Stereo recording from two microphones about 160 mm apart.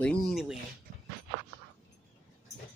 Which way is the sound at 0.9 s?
50° right (ahead or behind).